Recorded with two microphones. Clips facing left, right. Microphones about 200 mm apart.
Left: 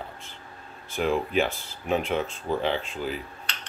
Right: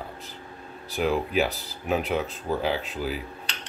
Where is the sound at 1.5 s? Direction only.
40° right (ahead or behind).